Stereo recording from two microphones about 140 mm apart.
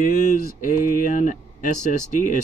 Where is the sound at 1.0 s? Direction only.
70° left (ahead or behind).